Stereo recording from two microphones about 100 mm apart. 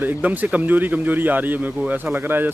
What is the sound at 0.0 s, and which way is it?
Speech, 15° right (ahead or behind).